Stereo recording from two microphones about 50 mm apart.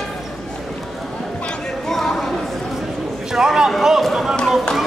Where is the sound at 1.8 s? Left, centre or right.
Centre.